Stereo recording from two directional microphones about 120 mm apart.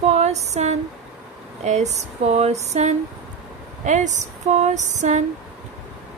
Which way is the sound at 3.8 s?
90° right.